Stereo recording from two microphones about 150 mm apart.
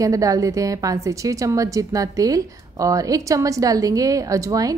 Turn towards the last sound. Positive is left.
turn(degrees=-20)  # may be behind; listen again after turning